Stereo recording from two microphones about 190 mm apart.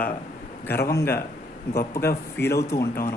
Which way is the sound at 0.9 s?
15° left (ahead or behind).